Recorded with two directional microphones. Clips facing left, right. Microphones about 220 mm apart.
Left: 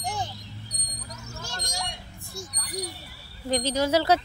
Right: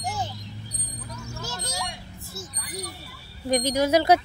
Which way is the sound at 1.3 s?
5° right (ahead or behind).